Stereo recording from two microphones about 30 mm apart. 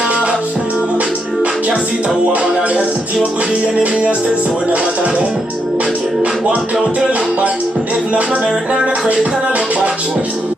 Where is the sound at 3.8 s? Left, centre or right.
Right.